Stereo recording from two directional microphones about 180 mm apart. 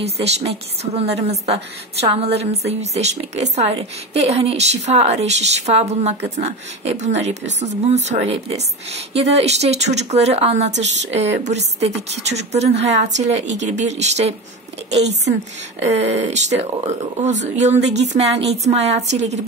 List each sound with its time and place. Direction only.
0.0 s a woman's voice: 35° right (ahead or behind)
10.8 s speech: 80° right
11.6 s a woman's voice: 40° right (ahead or behind)
16.0 s a woman's voice: 35° right (ahead or behind)
18.3 s speech: 75° right (ahead or behind)
18.6 s a woman's voice: 35° right (ahead or behind)